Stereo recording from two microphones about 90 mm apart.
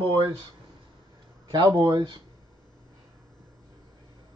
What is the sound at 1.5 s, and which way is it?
Speech, 60° right (ahead or behind).